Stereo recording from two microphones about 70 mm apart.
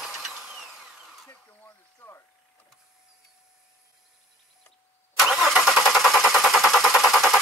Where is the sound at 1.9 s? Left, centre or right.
Left.